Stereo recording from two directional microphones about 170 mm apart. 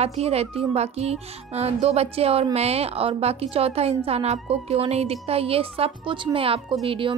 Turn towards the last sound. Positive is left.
turn(degrees=-35)  # may be behind; listen again after turning